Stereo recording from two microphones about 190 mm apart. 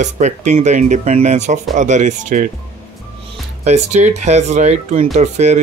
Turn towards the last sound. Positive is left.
turn(degrees=-40)  # may be behind; listen again after turning